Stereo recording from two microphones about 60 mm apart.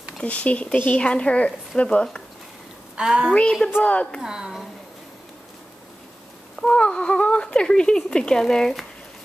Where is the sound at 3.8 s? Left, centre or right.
Left.